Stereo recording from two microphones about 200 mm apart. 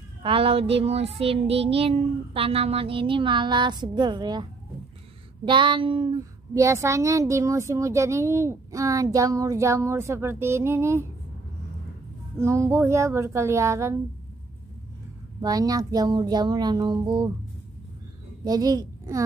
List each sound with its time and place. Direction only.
0.2 s child singing: 25° right (ahead or behind)
6.5 s speech: 15° right (ahead or behind)
12.4 s speech: 15° right (ahead or behind)
15.4 s child singing: 20° right (ahead or behind)
18.4 s a child's voice: 20° right (ahead or behind)